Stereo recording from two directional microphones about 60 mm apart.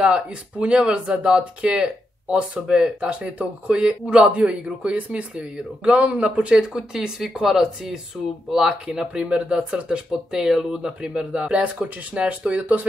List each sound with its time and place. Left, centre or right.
0.0 s a man's voice: centre